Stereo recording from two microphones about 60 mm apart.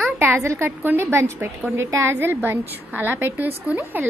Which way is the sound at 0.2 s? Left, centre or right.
Right.